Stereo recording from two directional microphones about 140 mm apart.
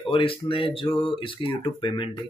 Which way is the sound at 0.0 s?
40° left (ahead or behind).